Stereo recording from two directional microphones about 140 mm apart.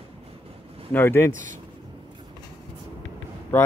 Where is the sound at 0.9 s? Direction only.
15° left (ahead or behind).